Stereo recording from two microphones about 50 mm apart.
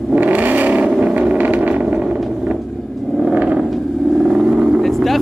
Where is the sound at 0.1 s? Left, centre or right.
Right.